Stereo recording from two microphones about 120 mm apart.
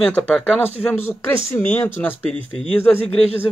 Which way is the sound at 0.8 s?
20° left (ahead or behind).